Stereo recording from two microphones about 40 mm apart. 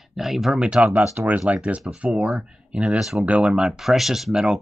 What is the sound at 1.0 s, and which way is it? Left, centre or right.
Speech, right.